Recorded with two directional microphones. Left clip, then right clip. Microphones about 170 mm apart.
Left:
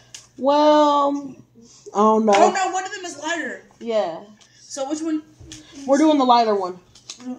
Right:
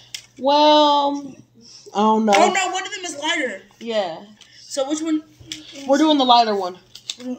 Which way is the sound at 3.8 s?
10° right (ahead or behind).